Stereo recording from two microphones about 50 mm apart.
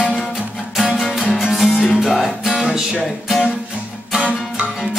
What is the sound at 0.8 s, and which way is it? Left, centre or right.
Music, centre.